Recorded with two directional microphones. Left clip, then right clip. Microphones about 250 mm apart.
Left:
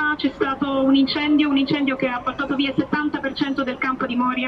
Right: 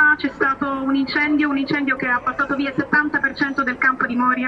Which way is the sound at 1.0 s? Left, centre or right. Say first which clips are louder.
Right 1 dB; centre.